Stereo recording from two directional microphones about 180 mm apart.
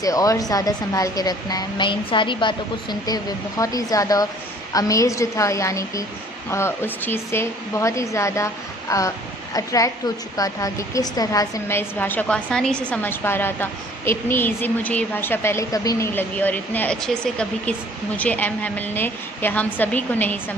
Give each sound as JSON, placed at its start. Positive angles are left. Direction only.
{"t": 0.0, "sound": "a woman's voice", "side_deg": 20}